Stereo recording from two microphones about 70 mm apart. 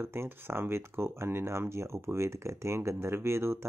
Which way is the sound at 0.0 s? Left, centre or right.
Right.